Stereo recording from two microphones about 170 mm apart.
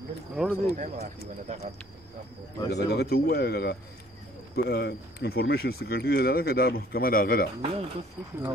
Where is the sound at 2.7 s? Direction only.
70° left (ahead or behind).